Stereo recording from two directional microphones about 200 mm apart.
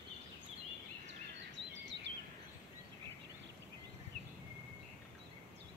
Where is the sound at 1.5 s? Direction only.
60° right (ahead or behind).